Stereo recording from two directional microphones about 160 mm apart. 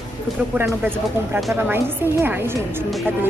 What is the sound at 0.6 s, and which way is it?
A woman's voice, 15° right (ahead or behind).